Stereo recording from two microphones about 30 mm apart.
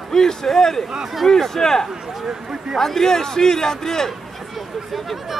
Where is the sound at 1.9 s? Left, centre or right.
Centre.